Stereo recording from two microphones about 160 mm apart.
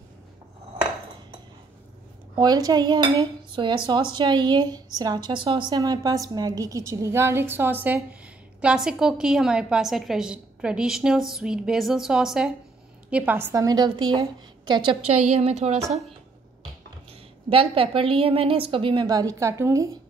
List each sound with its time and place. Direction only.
2.3 s cutlery: 25° right (ahead or behind); by 12.5 s 5° right (ahead or behind)
13.1 s a woman's voice: 10° right (ahead or behind); by 15.8 s 40° right (ahead or behind)
17.5 s a woman's voice: 35° right (ahead or behind); by 19.9 s 20° right (ahead or behind)